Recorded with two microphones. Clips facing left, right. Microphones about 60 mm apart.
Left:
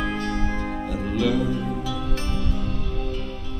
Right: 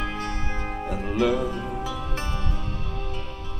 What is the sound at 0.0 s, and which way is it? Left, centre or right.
Music, right.